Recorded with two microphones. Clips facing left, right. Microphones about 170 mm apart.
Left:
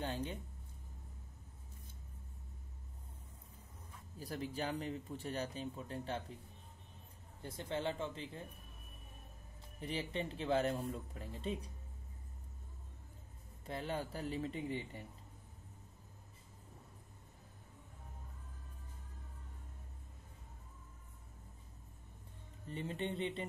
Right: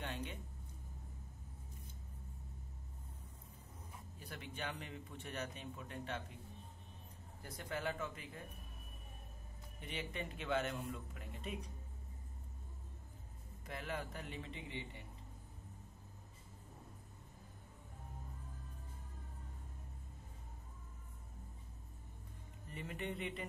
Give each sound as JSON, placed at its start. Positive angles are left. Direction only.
{"t": 0.0, "sound": "a sound", "side_deg": 35}
{"t": 4.2, "sound": "speech", "side_deg": 35}
{"t": 7.4, "sound": "speech", "side_deg": 25}
{"t": 9.8, "sound": "speech", "side_deg": 35}
{"t": 13.7, "sound": "speech", "side_deg": 30}
{"t": 22.7, "sound": "speech", "side_deg": 30}